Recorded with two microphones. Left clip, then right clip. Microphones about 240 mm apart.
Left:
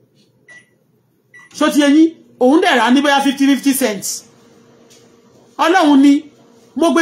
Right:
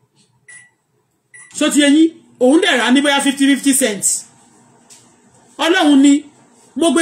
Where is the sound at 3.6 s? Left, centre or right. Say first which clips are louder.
Even; left.